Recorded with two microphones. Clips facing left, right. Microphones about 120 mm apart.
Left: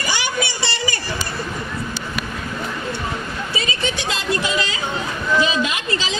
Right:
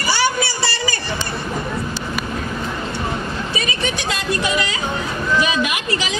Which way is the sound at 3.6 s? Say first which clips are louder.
Left 1 dB; 20° left (ahead or behind).